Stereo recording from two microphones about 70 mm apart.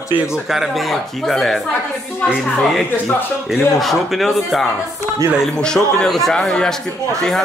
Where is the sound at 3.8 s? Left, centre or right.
Centre.